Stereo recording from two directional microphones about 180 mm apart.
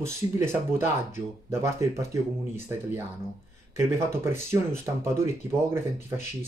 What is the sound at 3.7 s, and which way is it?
Speech, 15° right (ahead or behind).